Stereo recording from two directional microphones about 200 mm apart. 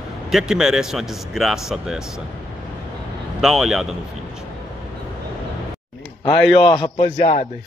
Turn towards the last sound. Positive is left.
turn(degrees=20)  # may be behind; listen again after turning